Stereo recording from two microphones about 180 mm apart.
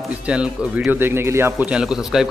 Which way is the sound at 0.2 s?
5° right (ahead or behind).